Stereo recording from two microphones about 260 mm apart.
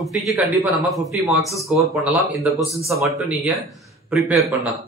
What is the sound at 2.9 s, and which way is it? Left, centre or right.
A man's voice, centre.